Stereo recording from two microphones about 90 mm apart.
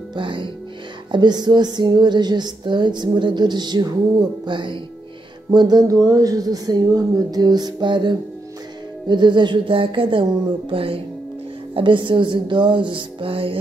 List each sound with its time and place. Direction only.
0.1 s music: 65° right (ahead or behind)
1.1 s a woman's voice: 50° right (ahead or behind)
4.5 s music: 65° right (ahead or behind)
5.5 s a woman's voice: 50° right (ahead or behind)
9.0 s music: 60° right (ahead or behind)
10.7 s speech: 90° right
11.7 s music: 65° right (ahead or behind); by 13.6 s 85° right